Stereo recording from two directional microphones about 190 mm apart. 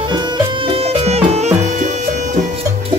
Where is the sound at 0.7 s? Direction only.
30° right (ahead or behind).